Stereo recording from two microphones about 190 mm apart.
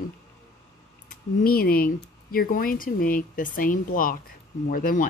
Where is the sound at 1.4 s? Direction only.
50° left (ahead or behind).